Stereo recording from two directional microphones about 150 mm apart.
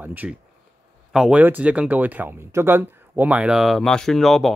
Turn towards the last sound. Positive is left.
turn(degrees=0)  # may be behind; listen again after turning